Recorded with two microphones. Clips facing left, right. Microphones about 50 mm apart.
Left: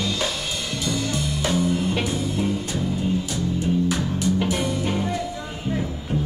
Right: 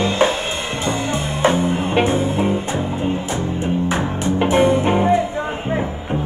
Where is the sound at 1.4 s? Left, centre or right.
Right.